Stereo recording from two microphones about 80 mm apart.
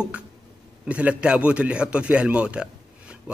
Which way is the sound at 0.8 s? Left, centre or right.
Centre.